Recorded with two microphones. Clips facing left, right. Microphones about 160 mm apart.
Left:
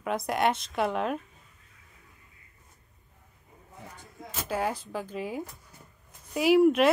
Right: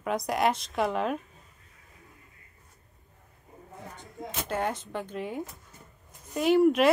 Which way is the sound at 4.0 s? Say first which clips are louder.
Right 5 dB; 20° right (ahead or behind).